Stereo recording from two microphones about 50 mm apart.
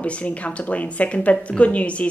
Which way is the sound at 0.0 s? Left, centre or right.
Left.